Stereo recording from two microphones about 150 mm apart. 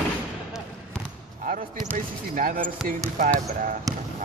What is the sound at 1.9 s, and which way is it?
Speech, 60° right (ahead or behind).